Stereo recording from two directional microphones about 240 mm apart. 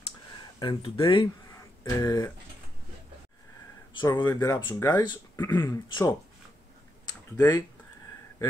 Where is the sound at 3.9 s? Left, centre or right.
Centre.